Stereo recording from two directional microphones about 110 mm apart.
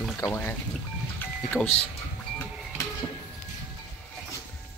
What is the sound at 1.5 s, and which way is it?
Speech, centre (ahead or behind).